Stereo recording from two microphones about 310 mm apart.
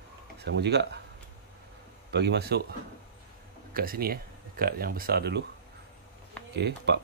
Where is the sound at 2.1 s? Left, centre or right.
Right.